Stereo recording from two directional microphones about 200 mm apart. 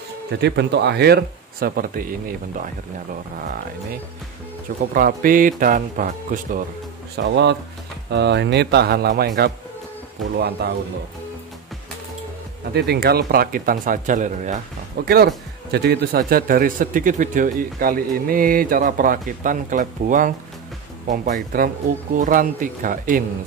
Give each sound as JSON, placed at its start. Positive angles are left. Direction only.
{"t": 0.4, "sound": "speech", "side_deg": -55}
{"t": 4.9, "sound": "speech", "side_deg": -45}
{"t": 7.2, "sound": "speech", "side_deg": -60}
{"t": 10.3, "sound": "speech", "side_deg": -50}
{"t": 12.7, "sound": "speech", "side_deg": -55}